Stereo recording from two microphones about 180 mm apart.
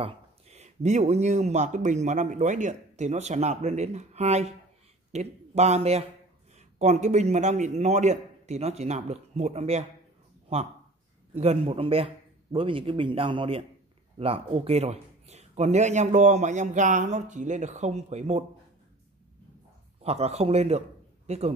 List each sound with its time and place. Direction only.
0.0 s speech: 35° right (ahead or behind)
11.3 s a man's voice: 35° right (ahead or behind)
20.0 s speech: 35° right (ahead or behind)